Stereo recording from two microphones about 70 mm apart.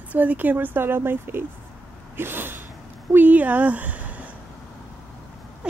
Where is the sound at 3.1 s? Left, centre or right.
Right.